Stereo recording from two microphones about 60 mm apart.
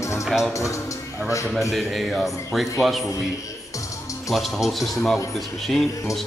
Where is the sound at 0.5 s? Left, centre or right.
Left.